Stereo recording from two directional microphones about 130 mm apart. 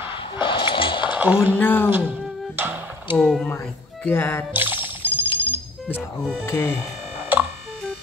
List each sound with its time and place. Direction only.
0.1 s a sound: 40° left (ahead or behind)
1.1 s speech: 15° right (ahead or behind)
1.6 s speech: 15° left (ahead or behind)
2.5 s music: 15° right (ahead or behind)
3.2 s speech: 5° left (ahead or behind)
3.4 s speech: 15° left (ahead or behind)
4.6 s music: 15° right (ahead or behind)
6.4 s speech: 15° left (ahead or behind)